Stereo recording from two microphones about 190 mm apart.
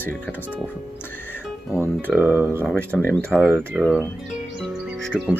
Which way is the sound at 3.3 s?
10° right (ahead or behind).